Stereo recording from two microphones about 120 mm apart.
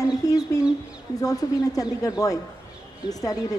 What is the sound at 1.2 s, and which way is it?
Speech, 30° left (ahead or behind).